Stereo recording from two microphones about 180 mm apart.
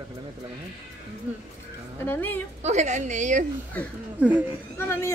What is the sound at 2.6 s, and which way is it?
Speech, 40° right (ahead or behind).